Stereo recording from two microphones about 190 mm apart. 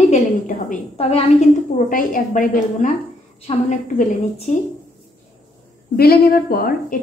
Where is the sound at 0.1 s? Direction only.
40° left (ahead or behind).